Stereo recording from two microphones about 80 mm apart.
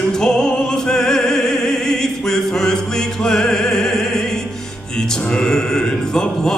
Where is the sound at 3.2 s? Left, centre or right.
Centre.